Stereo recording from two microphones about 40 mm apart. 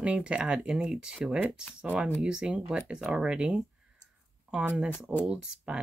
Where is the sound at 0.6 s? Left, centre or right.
Centre.